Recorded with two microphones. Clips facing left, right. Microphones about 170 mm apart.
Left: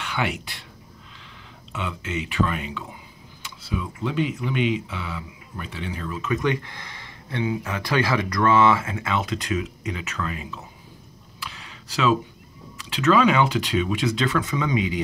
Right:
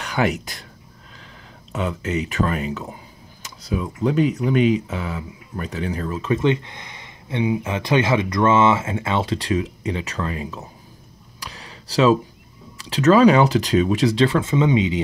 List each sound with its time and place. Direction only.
0.0 s speech: 40° right (ahead or behind)
1.7 s speech: 40° right (ahead or behind)
6.3 s speech: 25° right (ahead or behind)
11.3 s a sound: 40° right (ahead or behind)
12.7 s speech: 35° right (ahead or behind)